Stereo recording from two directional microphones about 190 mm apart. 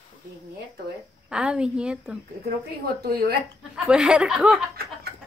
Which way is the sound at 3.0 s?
55° right (ahead or behind).